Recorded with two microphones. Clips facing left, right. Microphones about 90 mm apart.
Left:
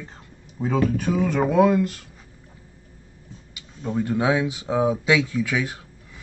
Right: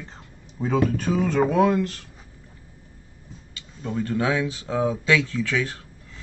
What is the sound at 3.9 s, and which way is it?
Speech, 15° left (ahead or behind).